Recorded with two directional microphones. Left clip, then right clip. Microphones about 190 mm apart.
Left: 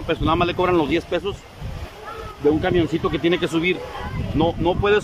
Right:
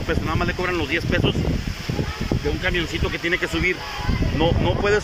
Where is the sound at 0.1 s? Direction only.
15° left (ahead or behind).